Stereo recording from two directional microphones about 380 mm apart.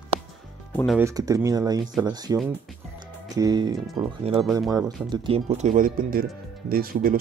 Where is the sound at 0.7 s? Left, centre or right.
Centre.